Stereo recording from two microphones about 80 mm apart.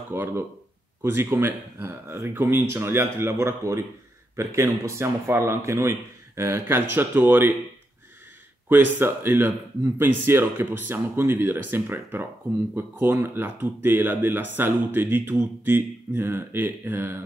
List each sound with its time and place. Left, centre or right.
0.1 s a man's voice: right
8.6 s speech: right